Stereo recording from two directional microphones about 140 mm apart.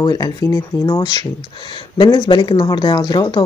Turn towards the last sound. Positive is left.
turn(degrees=30)  # may be behind; listen again after turning